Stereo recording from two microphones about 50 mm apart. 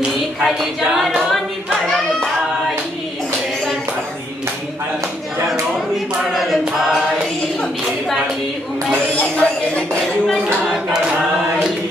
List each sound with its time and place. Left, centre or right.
0.6 s a capella: centre
6.3 s music: centre
9.1 s a sound: left